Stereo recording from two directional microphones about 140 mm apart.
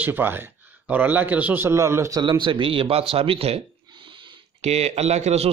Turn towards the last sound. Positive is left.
turn(degrees=-50)  # may be behind; listen again after turning